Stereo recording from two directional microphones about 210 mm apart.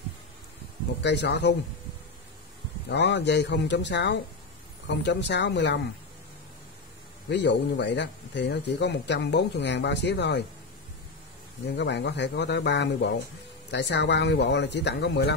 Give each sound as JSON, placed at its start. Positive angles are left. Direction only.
{"t": 1.0, "sound": "speech", "side_deg": 55}
{"t": 2.9, "sound": "speech", "side_deg": 55}
{"t": 7.2, "sound": "speech", "side_deg": 55}
{"t": 11.7, "sound": "speech", "side_deg": 55}